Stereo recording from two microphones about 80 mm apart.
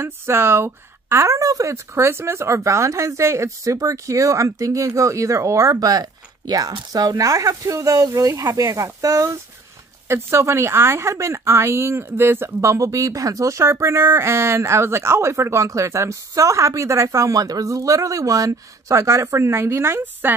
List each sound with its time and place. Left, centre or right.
0.0 s a woman's voice: right